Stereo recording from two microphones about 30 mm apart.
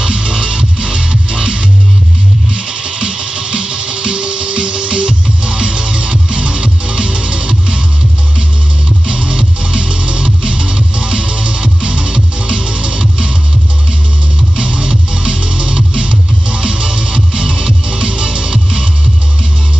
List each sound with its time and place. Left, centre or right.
0.0 s music: right
4.6 s music: right
9.0 s music: right
9.3 s music: right
14.6 s music: right